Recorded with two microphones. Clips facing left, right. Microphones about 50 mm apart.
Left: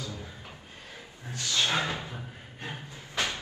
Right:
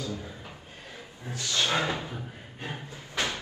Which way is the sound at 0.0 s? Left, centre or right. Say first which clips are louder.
Right 4 dB; right.